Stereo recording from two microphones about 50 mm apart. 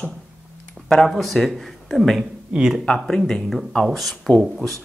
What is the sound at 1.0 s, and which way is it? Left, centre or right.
Speech, centre.